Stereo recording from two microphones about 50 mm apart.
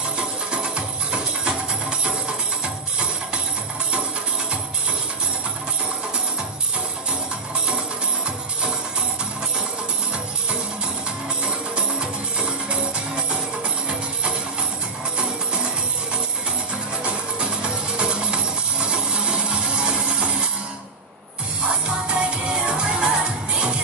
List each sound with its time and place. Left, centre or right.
0.5 s music: centre
17.0 s music: right
21.6 s music: centre